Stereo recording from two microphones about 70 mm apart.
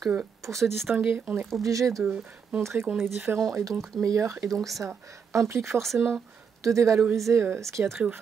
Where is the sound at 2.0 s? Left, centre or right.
Centre.